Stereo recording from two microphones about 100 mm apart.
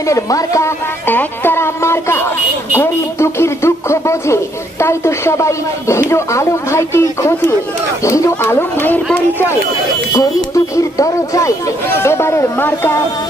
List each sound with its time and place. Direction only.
0.0 s speech: 35° left (ahead or behind)
1.0 s speech: 20° left (ahead or behind)
8.0 s a sound: 30° left (ahead or behind)
9.1 s speech: 20° left (ahead or behind)
10.1 s speech: 35° left (ahead or behind)